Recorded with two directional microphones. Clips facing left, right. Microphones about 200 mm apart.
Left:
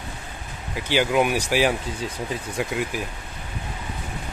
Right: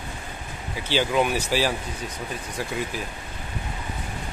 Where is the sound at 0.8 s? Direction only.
10° left (ahead or behind).